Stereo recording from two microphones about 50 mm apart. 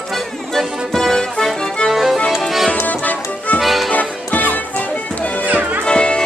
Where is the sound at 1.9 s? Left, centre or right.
Centre.